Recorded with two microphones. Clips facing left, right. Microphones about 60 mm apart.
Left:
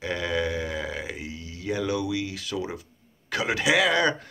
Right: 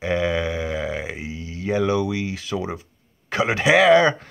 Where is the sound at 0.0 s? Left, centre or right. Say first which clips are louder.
Right 5 dB; right.